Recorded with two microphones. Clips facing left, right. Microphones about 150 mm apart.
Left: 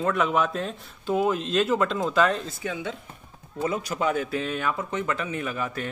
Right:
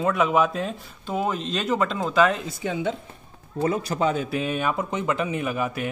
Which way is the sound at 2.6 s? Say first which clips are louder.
Right 7 dB; 25° right (ahead or behind).